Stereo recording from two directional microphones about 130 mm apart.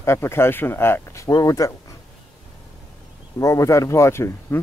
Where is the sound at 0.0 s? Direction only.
20° left (ahead or behind).